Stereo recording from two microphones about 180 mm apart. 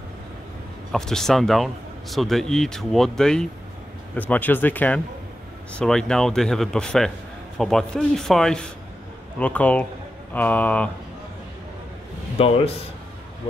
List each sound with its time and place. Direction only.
0.9 s speech: 5° left (ahead or behind)
12.4 s a man's voice: 30° left (ahead or behind)